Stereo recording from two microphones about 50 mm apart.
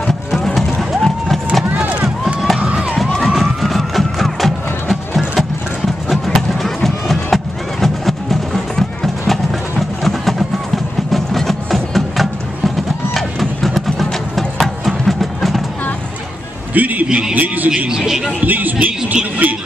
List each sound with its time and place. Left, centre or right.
0.0 s music: centre
1.8 s run: right
2.2 s a sound: centre
2.6 s crowd: centre
3.3 s music: centre
16.7 s a sound: right
17.8 s a man's voice: centre
18.4 s speech: right